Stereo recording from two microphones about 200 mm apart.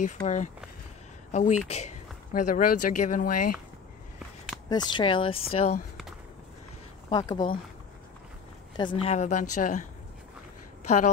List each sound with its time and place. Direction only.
0.0 s speech: 40° left (ahead or behind)
4.6 s speech: 20° left (ahead or behind)
7.1 s speech: 20° left (ahead or behind)
8.7 s speech: 25° left (ahead or behind)